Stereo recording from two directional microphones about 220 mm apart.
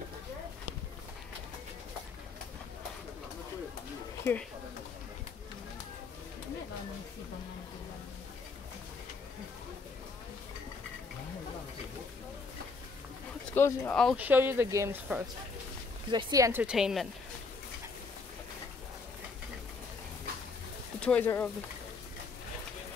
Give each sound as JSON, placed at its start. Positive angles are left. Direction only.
{"t": 4.2, "sound": "speech", "side_deg": 10}
{"t": 13.5, "sound": "speech", "side_deg": 10}
{"t": 14.1, "sound": "speech", "side_deg": -10}
{"t": 16.6, "sound": "speech", "side_deg": 0}
{"t": 21.0, "sound": "speech", "side_deg": 5}